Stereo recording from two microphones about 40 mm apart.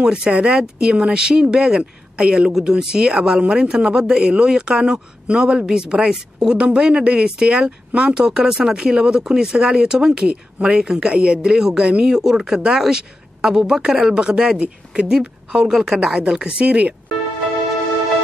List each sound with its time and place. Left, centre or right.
0.0 s speech: right